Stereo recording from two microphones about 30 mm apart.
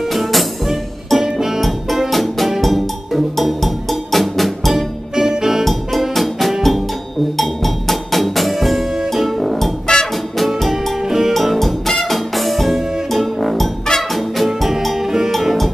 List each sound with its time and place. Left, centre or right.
0.1 s music: centre
0.7 s music: centre
2.0 s music: centre
4.7 s music: centre
5.6 s music: centre
9.9 s music: left
10.4 s music: centre
11.1 s music: centre
11.3 s music: centre